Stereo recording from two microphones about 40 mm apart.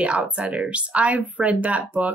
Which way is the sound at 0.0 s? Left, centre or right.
Right.